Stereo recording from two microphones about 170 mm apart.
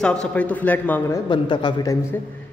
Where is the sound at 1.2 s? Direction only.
25° left (ahead or behind).